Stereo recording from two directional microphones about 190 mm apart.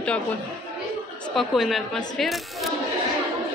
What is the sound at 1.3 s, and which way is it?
Speech, centre (ahead or behind).